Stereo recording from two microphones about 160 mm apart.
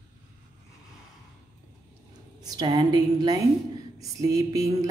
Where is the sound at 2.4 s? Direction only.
25° right (ahead or behind).